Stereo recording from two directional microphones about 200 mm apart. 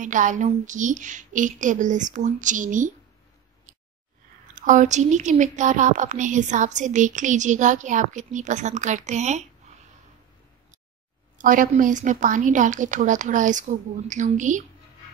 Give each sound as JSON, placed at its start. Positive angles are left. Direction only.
{"t": 0.0, "sound": "a woman's voice", "side_deg": -40}
{"t": 4.6, "sound": "a woman's voice", "side_deg": -40}
{"t": 11.3, "sound": "a woman's voice", "side_deg": -40}